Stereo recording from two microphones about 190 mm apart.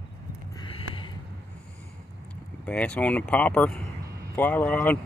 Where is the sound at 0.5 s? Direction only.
25° left (ahead or behind).